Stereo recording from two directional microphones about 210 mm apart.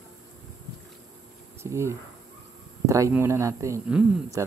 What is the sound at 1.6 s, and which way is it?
Speech, 15° right (ahead or behind).